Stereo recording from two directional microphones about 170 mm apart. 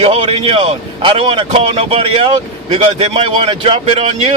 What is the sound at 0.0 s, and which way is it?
A man's voice, 40° right (ahead or behind).